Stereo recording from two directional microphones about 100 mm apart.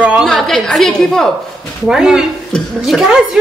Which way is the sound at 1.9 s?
5° right (ahead or behind).